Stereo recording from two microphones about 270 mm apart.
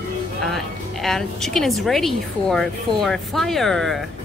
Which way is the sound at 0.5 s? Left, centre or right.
Centre.